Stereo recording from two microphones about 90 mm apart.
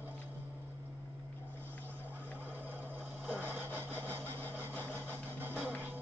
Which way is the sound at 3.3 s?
25° right (ahead or behind).